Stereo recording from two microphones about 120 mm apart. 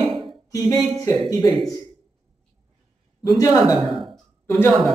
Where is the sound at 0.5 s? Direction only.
30° left (ahead or behind).